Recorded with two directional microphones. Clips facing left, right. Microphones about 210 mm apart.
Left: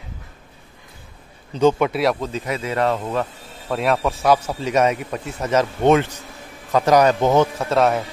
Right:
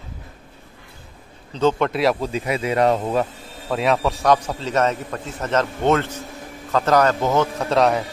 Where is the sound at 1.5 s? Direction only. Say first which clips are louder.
Left 2 dB; 10° left (ahead or behind).